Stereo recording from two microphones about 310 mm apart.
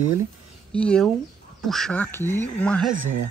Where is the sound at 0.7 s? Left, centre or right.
Centre.